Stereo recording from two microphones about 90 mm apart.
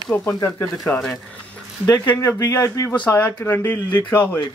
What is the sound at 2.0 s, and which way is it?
Speech, 25° left (ahead or behind).